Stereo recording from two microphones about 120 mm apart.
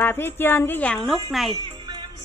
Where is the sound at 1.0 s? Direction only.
Centre (ahead or behind).